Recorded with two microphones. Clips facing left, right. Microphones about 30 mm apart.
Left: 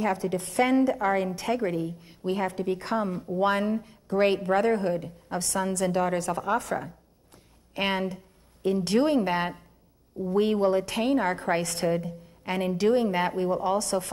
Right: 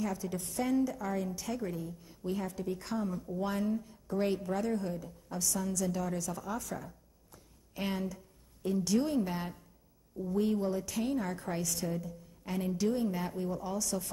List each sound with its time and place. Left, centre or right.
0.0 s a woman's voice: left